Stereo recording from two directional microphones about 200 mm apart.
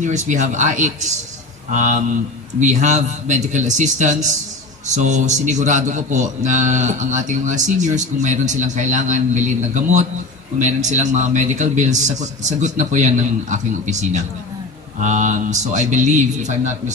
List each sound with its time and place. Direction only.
0.0 s a man's voice: 35° right (ahead or behind)